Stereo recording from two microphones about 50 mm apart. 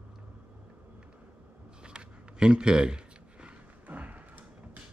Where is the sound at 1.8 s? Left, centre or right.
Centre.